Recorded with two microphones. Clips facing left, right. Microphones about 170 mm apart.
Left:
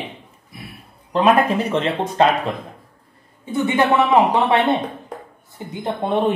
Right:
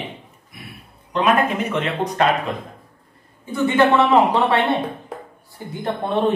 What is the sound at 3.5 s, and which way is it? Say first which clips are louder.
Speech: right 1 dB; 15° left (ahead or behind).